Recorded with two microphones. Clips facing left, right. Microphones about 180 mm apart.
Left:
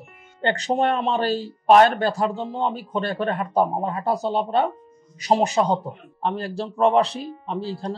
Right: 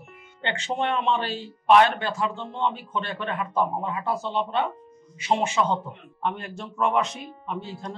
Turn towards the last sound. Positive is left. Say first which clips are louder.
# left 6 dB
turn(degrees=35)  # may be behind; listen again after turning